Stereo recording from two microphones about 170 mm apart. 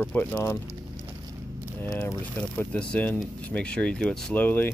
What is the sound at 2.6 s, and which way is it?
Speech, 5° left (ahead or behind).